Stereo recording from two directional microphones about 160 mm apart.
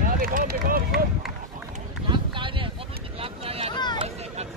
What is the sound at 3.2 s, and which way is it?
Vehicle, 35° right (ahead or behind).